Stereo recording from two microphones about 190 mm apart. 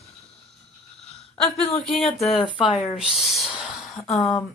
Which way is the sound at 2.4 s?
25° left (ahead or behind).